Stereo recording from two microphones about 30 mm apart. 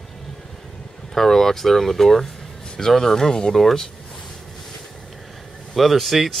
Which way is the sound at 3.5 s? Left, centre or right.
Centre.